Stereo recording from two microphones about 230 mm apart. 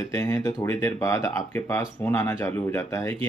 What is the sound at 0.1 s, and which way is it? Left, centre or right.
Speech, centre.